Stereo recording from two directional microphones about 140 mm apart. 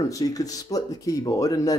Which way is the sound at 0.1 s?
25° left (ahead or behind).